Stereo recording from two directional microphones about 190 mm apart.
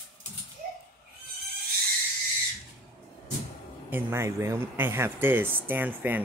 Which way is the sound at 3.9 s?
15° right (ahead or behind).